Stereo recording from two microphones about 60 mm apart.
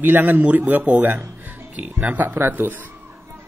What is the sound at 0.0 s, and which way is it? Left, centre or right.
A man's voice, right.